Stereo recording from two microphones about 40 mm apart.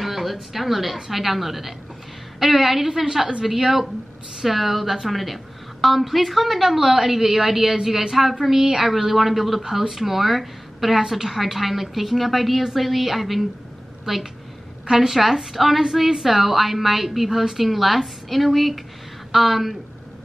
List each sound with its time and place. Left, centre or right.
0.0 s a woman's voice: centre